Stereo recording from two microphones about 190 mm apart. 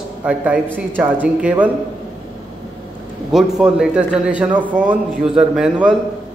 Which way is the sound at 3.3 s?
Centre (ahead or behind).